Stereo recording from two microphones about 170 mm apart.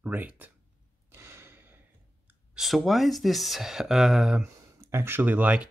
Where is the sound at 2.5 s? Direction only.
5° right (ahead or behind).